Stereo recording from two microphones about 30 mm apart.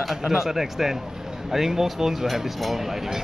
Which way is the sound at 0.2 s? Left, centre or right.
Centre.